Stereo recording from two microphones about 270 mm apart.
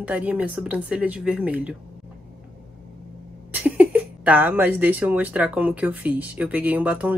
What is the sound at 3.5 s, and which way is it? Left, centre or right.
Speech, centre.